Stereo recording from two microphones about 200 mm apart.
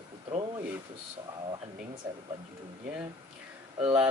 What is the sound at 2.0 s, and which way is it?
Speech, 15° right (ahead or behind).